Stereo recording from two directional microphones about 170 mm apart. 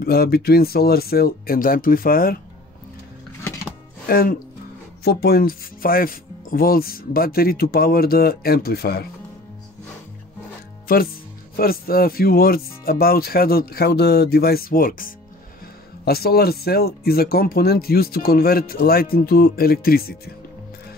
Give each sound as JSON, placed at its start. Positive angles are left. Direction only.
{"t": 0.0, "sound": "speech", "side_deg": 65}
{"t": 4.1, "sound": "speech", "side_deg": 60}
{"t": 10.9, "sound": "speech", "side_deg": 60}